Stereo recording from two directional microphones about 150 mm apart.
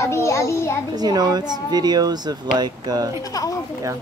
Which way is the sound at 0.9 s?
25° right (ahead or behind).